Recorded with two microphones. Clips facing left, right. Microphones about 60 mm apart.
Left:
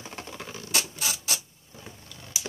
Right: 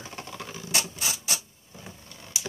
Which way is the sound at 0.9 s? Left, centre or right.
Centre.